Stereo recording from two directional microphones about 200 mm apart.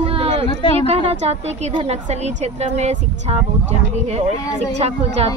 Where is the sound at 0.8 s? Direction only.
30° right (ahead or behind).